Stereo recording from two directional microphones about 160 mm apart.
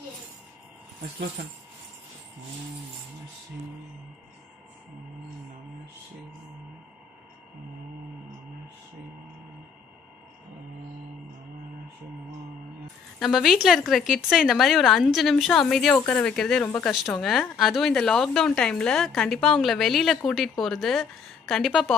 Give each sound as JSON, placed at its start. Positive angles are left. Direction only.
{"t": 1.4, "sound": "speech", "side_deg": -70}
{"t": 13.2, "sound": "a woman's voice", "side_deg": 0}